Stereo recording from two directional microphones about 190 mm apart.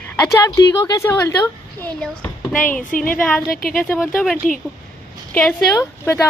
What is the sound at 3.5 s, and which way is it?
Speech, 50° left (ahead or behind).